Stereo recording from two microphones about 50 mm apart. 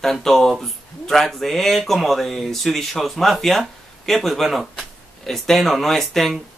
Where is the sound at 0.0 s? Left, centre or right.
Centre.